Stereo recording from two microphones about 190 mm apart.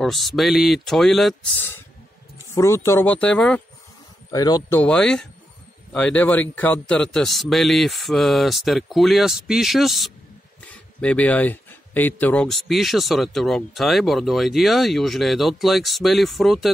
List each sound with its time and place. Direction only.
0.0 s speech: centre (ahead or behind)
4.3 s speech: 20° left (ahead or behind)
4.7 s speech: 5° left (ahead or behind)